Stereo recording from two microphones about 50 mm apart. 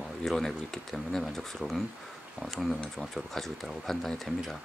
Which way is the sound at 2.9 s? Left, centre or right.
Centre.